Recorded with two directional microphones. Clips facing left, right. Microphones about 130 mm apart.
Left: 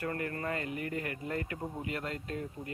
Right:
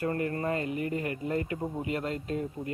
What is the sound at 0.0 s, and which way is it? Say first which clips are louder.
Speech: right 6 dB; 25° right (ahead or behind).